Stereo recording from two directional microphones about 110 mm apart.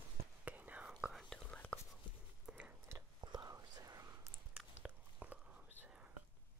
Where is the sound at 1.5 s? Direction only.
10° left (ahead or behind).